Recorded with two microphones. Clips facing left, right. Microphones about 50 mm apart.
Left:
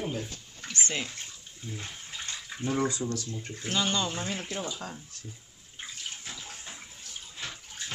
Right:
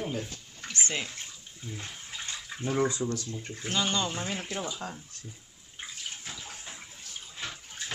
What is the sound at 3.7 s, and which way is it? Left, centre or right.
Speech, centre.